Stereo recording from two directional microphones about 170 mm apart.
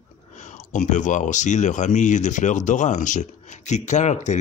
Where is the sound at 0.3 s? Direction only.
45° left (ahead or behind).